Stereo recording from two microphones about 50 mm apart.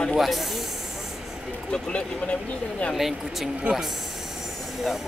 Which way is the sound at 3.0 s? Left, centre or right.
Centre.